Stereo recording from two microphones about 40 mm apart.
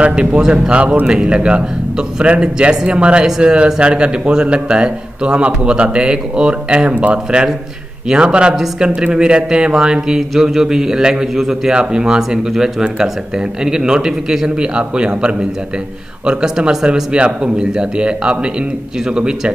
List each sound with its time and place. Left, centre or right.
0.0 s a man's voice: right; by 11.7 s centre
11.7 s a man's voice: right
14.6 s a man's voice: right